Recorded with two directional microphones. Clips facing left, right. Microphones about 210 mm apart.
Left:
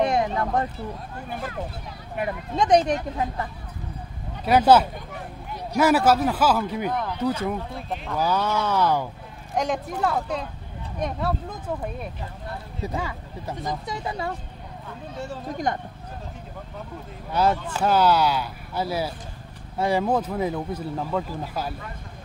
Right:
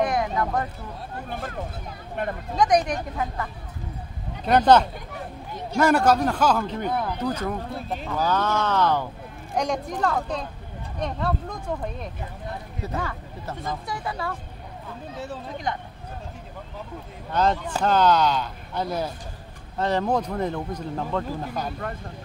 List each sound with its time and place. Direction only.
0.0 s a sound: 25° left (ahead or behind)
2.5 s speech: 25° left (ahead or behind)
4.5 s speech: 5° left (ahead or behind)
6.9 s speech: 10° right (ahead or behind)
7.2 s speech: 10° left (ahead or behind)
8.2 s speech: 10° left (ahead or behind)
15.5 s speech: 45° left (ahead or behind)
17.3 s speech: 10° left (ahead or behind)